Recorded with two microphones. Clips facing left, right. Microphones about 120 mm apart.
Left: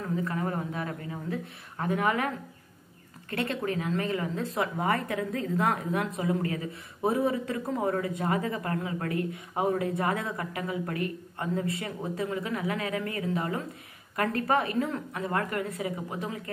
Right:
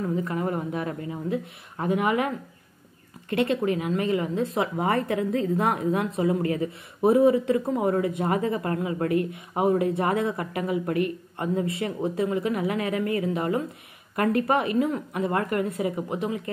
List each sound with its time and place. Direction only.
0.2 s a woman's voice: 20° right (ahead or behind)
3.3 s a woman's voice: 15° right (ahead or behind)